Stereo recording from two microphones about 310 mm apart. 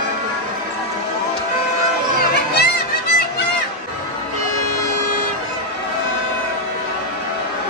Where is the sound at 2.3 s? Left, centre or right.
Left.